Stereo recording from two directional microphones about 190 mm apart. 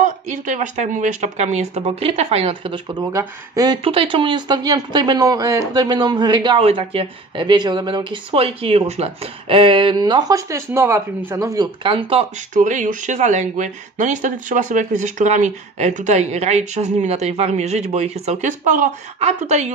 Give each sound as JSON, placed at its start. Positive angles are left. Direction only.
{"t": 0.0, "sound": "speech", "side_deg": -40}
{"t": 12.5, "sound": "speech", "side_deg": -40}